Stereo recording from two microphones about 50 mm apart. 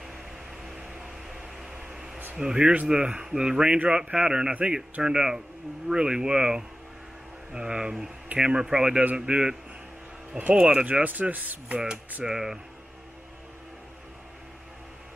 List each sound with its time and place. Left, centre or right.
0.8 s a sound: centre
2.3 s speech: centre
11.1 s speech: right
12.3 s speech: centre